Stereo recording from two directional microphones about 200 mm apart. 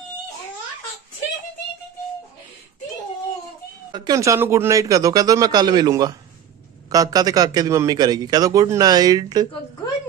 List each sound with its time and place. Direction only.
3.9 s a man's voice: 20° right (ahead or behind)